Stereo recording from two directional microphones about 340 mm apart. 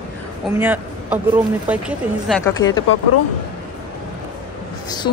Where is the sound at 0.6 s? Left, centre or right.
Centre.